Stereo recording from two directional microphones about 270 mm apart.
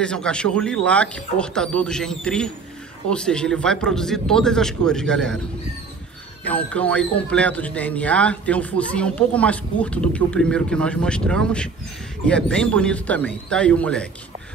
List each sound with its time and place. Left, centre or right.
0.0 s a man's voice: centre
6.4 s a man's voice: centre